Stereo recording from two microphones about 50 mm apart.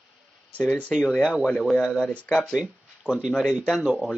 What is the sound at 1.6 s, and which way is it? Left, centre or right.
Mantra, centre.